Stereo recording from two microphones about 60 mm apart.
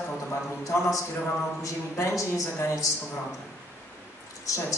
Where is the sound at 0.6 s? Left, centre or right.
Left.